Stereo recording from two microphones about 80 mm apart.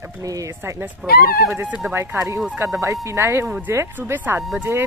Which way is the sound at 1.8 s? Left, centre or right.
Right.